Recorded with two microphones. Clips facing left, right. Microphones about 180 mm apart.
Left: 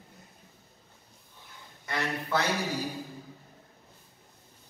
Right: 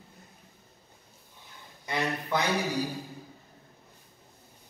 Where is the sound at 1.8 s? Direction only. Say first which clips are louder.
Right 2 dB; 15° right (ahead or behind).